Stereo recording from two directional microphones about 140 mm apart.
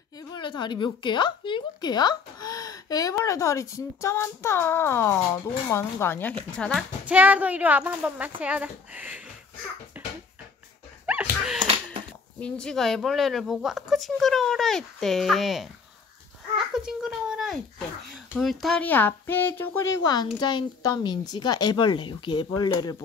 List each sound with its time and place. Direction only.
0.3 s a woman's voice: 35° left (ahead or behind); by 6.8 s 5° left (ahead or behind)
7.1 s speech: 10° right (ahead or behind)
9.9 s bouncing: 10° right (ahead or behind)
11.1 s dog: 5° right (ahead or behind)
12.4 s speech: 5° left (ahead or behind)
16.7 s speech: 5° right (ahead or behind); by 22.9 s 30° left (ahead or behind)